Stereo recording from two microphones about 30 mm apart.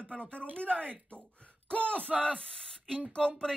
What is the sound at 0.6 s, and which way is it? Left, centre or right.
Speech, left.